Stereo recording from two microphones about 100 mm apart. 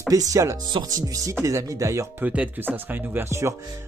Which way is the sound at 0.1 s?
35° right (ahead or behind).